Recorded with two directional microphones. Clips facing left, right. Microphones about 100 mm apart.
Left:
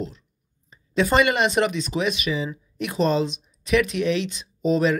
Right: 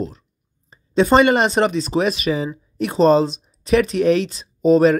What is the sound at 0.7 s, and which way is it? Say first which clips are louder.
Speech: right 6 dB; 30° right (ahead or behind).